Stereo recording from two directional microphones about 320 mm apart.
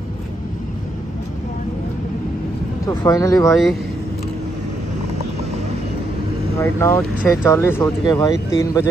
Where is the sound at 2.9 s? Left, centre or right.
Centre.